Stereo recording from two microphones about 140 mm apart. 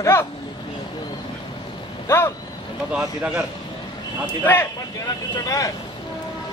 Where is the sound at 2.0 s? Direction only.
20° left (ahead or behind).